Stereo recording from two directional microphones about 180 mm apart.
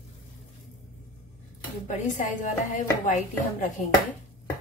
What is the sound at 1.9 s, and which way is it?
A woman's voice, 45° left (ahead or behind).